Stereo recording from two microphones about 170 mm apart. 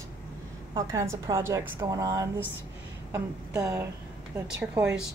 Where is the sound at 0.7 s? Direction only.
20° right (ahead or behind).